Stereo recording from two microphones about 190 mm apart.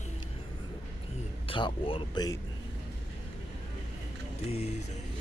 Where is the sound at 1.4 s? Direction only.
25° left (ahead or behind).